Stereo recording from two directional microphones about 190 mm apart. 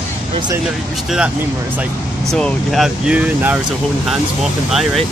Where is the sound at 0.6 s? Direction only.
5° right (ahead or behind).